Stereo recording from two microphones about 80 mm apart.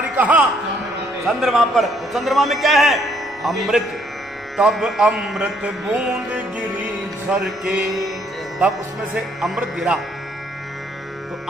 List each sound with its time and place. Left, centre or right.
0.2 s a sound: centre
1.2 s a man's voice: centre
7.3 s a man's voice: centre